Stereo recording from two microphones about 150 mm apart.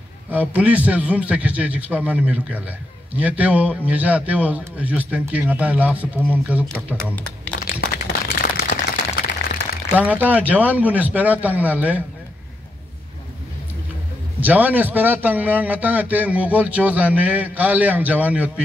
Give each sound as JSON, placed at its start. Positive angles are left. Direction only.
{"t": 0.3, "sound": "a man's voice", "side_deg": -10}
{"t": 7.8, "sound": "a sound", "side_deg": 80}
{"t": 9.9, "sound": "a man's voice", "side_deg": -10}
{"t": 14.4, "sound": "a man's voice", "side_deg": -10}